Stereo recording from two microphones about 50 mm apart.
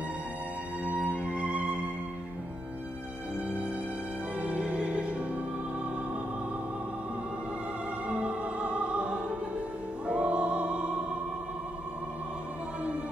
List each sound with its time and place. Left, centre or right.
0.8 s music: right
4.4 s music: right
8.1 s music: right